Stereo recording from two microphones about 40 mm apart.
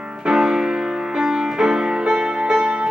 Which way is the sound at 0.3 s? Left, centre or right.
Centre.